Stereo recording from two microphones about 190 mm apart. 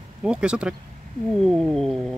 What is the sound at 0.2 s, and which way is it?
Speech, 5° right (ahead or behind).